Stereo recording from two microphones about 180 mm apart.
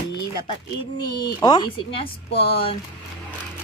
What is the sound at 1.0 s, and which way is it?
Speech, 25° left (ahead or behind).